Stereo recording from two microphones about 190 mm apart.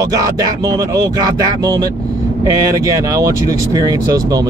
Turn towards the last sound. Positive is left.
turn(degrees=-20)  # may be behind; listen again after turning